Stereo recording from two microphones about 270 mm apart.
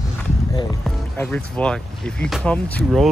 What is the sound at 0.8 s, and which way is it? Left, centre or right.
Speech, centre.